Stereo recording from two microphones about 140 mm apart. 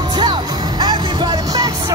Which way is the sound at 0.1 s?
30° right (ahead or behind).